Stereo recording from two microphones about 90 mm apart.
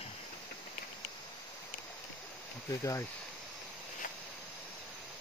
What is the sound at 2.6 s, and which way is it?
Speech, 35° left (ahead or behind).